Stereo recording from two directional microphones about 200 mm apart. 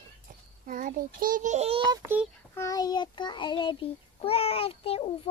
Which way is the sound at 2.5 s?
15° left (ahead or behind).